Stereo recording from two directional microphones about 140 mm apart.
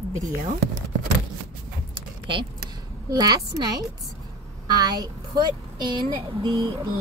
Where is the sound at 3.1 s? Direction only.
25° right (ahead or behind).